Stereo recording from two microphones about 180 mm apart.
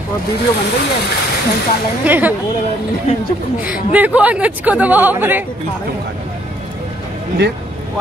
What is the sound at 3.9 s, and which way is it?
Speech, 10° right (ahead or behind).